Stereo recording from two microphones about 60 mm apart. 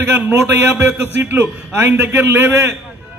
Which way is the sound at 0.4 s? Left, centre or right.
Right.